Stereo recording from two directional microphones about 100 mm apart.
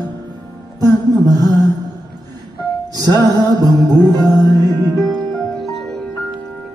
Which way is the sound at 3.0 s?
40° right (ahead or behind).